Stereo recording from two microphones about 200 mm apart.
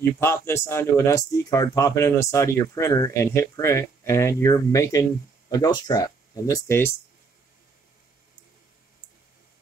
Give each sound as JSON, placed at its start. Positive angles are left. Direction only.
{"t": 0.2, "sound": "speech", "side_deg": 10}